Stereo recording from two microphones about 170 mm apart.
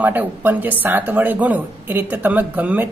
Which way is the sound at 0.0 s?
10° right (ahead or behind).